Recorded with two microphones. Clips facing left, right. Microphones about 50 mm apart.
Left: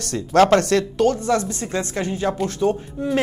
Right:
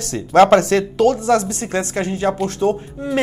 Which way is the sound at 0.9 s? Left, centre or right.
Right.